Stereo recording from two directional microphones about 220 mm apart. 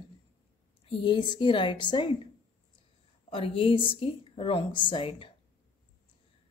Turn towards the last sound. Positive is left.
turn(degrees=25)  # may be behind; listen again after turning